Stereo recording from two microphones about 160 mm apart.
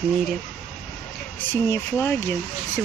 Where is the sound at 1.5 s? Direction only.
15° left (ahead or behind).